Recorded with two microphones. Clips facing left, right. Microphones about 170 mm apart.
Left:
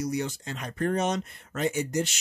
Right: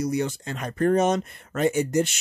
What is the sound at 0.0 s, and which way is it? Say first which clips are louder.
Speech: right 4 dB; 55° right (ahead or behind).